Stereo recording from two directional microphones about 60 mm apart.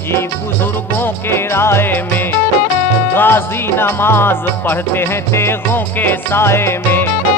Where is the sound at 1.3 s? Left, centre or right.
Left.